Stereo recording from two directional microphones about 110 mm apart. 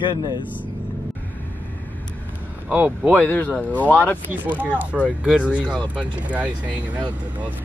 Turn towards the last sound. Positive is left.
turn(degrees=-10)  # may be behind; listen again after turning